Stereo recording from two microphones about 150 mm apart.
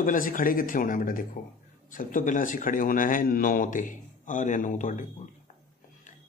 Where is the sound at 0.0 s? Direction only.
65° left (ahead or behind).